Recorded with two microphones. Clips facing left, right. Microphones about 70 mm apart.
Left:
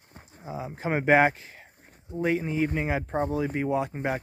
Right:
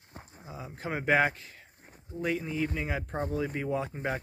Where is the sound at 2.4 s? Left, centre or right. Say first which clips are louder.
Left 5 dB; left.